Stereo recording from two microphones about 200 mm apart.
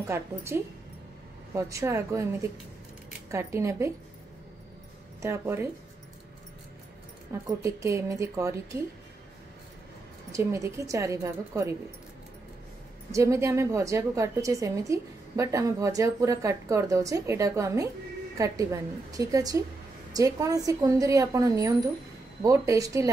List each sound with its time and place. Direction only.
0.0 s a woman's voice: 15° right (ahead or behind)
5.2 s a woman's voice: 15° right (ahead or behind)
7.3 s a woman's voice: 15° right (ahead or behind)
10.3 s a woman's voice: 15° right (ahead or behind)
13.1 s a woman's voice: 15° right (ahead or behind)